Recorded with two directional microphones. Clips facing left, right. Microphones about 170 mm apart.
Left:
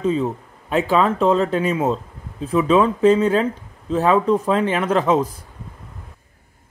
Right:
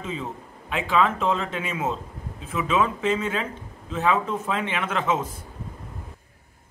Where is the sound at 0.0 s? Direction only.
40° left (ahead or behind).